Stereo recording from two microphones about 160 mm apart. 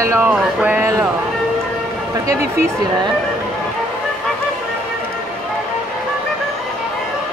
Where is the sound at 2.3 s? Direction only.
20° right (ahead or behind).